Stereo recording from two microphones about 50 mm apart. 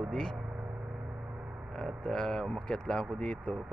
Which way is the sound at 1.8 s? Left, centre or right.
Centre.